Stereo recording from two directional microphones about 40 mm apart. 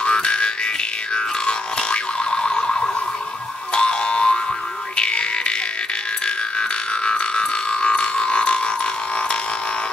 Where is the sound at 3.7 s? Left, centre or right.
Left.